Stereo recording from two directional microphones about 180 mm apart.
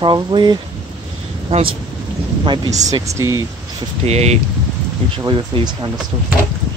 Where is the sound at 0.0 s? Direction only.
25° right (ahead or behind).